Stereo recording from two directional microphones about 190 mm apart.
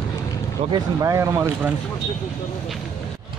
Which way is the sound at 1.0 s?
15° right (ahead or behind).